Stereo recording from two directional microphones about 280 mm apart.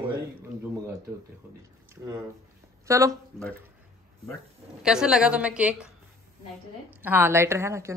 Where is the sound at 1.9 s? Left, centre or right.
Centre.